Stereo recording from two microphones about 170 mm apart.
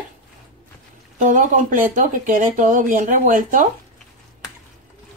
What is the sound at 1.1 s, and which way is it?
A woman's voice, 50° right (ahead or behind).